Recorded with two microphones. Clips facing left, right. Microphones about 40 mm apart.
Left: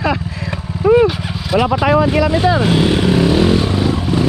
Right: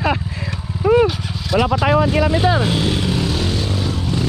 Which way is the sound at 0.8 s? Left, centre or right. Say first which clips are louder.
Left 3 dB; left.